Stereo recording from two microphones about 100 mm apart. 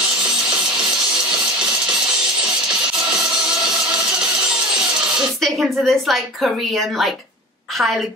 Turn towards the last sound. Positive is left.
turn(degrees=0)  # may be behind; listen again after turning